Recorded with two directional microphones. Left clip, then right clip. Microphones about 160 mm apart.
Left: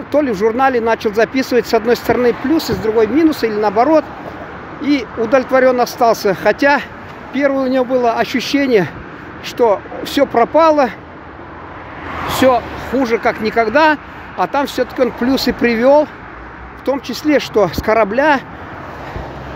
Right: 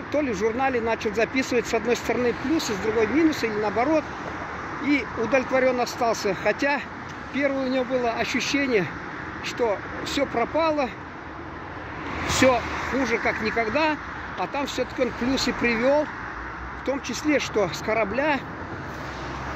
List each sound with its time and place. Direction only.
0.1 s speech: 40° left (ahead or behind)
12.3 s vehicle: 25° left (ahead or behind)
12.9 s speech: 45° left (ahead or behind)